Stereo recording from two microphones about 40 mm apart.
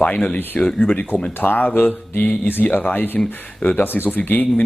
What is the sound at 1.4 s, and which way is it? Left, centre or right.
Speech, left.